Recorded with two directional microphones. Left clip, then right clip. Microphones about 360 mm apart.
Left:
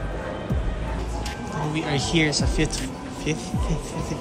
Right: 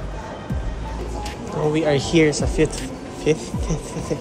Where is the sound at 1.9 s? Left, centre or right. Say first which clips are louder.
Right 5 dB; centre.